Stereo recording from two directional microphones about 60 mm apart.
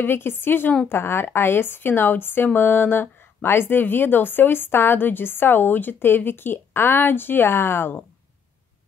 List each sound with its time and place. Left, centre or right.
0.0 s a woman's voice: left